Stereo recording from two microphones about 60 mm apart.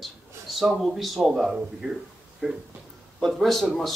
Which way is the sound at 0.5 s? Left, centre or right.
Centre.